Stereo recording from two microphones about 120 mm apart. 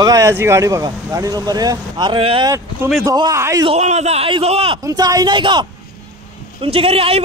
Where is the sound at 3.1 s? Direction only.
30° right (ahead or behind).